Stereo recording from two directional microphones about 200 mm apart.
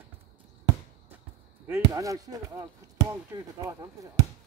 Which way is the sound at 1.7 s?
15° right (ahead or behind).